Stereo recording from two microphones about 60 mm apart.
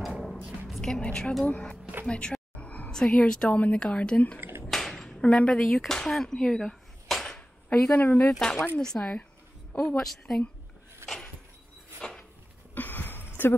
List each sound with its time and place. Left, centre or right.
0.7 s music: centre
1.0 s a woman's voice: centre
2.0 s a sound: centre
2.9 s a sound: centre
3.2 s a woman's voice: centre
4.4 s finger snapping: right
4.6 s a sound: centre
5.2 s a woman's voice: centre
5.6 s speech: centre
7.9 s a woman's voice: left
8.3 s a woman's voice: centre
12.7 s a sound: left